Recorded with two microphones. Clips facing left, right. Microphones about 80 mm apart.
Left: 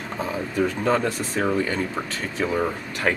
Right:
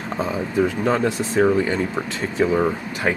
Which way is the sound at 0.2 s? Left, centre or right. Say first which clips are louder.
Right 3 dB; centre.